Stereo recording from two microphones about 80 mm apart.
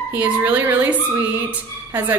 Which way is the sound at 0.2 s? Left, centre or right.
Right.